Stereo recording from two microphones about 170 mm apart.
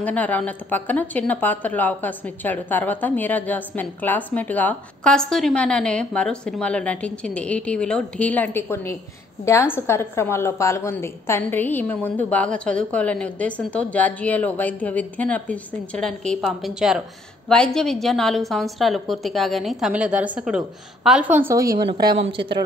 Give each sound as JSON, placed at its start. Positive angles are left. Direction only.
{"t": 0.0, "sound": "a woman's voice", "side_deg": 10}
{"t": 21.5, "sound": "speech", "side_deg": -20}